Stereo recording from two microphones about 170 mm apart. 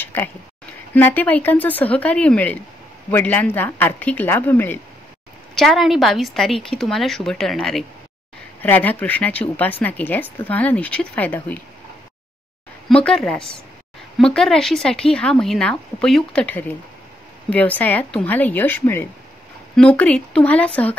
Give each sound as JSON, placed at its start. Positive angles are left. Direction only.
{"t": 0.0, "sound": "a sound", "side_deg": 10}
{"t": 0.9, "sound": "speech", "side_deg": 10}
{"t": 5.5, "sound": "a woman's voice", "side_deg": 0}
{"t": 12.8, "sound": "a woman's voice", "side_deg": 5}